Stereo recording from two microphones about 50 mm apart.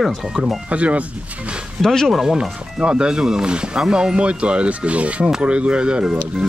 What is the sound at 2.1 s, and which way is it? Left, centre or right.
Speech, centre.